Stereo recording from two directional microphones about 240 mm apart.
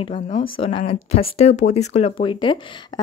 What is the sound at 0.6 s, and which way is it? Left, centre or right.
Speech, left.